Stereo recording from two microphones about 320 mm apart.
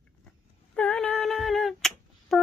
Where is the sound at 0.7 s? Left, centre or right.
Centre.